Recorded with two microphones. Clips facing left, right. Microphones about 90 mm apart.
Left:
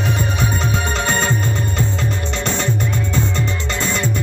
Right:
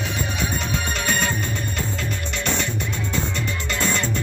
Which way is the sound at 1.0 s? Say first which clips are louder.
Left 4 dB; 30° left (ahead or behind).